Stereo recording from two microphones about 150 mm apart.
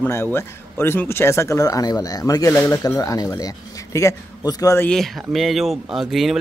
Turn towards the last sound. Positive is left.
turn(degrees=0)  # may be behind; listen again after turning